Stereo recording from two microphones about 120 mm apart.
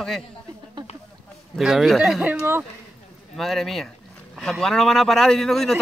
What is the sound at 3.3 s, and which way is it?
Speech, centre (ahead or behind).